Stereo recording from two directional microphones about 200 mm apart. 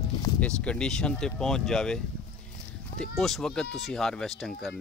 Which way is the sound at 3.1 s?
Centre (ahead or behind).